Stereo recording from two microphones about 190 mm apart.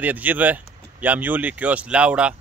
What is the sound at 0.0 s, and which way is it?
Speech, 10° right (ahead or behind).